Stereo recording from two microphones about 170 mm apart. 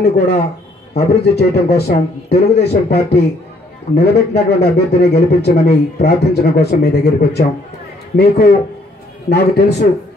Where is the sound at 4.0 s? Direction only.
70° left (ahead or behind).